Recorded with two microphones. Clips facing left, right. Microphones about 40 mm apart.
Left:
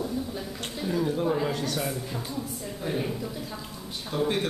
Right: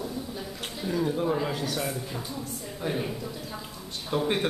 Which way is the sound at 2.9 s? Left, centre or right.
Centre.